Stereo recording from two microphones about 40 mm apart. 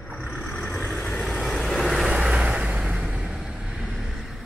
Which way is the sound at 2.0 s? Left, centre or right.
Right.